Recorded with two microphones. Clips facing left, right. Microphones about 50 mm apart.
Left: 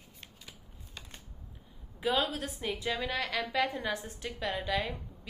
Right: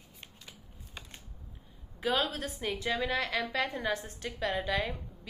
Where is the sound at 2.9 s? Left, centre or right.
Centre.